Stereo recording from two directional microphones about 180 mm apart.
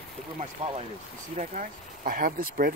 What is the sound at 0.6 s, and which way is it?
Speech, 30° right (ahead or behind).